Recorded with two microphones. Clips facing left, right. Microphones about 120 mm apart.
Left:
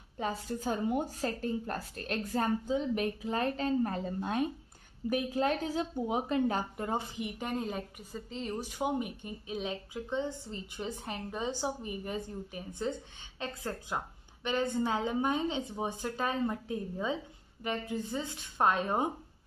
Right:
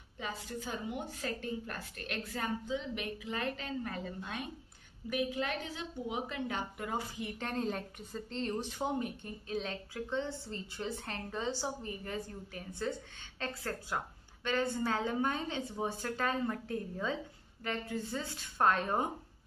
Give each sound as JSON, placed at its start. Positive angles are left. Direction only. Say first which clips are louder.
{"t": 0.2, "sound": "a woman's voice", "louder": "left 6 dB", "side_deg": 45}